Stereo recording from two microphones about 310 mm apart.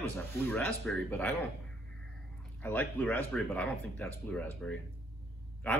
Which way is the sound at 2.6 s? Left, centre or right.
Centre.